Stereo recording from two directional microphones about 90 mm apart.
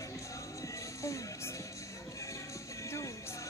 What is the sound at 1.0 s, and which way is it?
Music, 35° left (ahead or behind).